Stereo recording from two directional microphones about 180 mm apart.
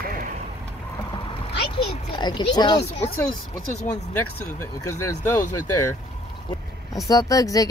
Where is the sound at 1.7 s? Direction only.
25° left (ahead or behind).